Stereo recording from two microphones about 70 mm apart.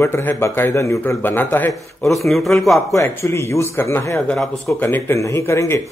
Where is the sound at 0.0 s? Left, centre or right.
Left.